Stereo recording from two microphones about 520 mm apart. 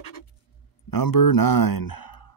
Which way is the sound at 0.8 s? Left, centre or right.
Left.